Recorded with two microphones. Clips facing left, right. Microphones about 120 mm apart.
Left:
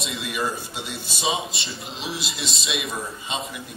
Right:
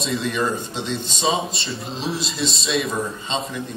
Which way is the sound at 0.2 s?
10° left (ahead or behind).